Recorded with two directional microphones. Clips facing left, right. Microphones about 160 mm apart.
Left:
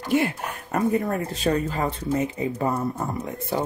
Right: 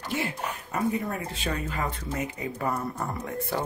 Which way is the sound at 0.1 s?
55° left (ahead or behind).